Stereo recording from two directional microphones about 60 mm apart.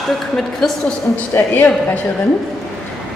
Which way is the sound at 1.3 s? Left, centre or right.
Left.